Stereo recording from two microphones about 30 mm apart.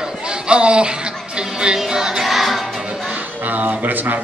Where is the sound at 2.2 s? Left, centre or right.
Centre.